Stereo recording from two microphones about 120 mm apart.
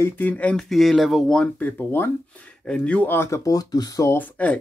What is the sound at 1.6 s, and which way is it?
Speech, 15° left (ahead or behind).